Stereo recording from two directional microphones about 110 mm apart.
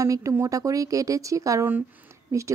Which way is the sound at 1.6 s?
15° right (ahead or behind).